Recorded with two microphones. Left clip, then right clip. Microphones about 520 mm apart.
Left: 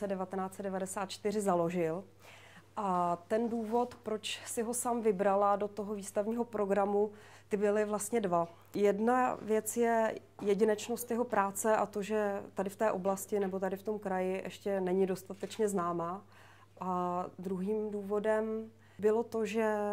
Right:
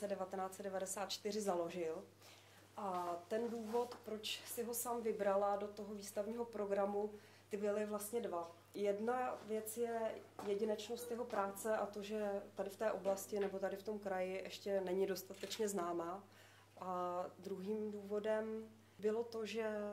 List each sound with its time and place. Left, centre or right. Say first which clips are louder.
0.0 s a woman's voice: left 6 dB; left
3.3 s a woman's voice: left 7 dB; left
4.6 s a woman's voice: left 10 dB; left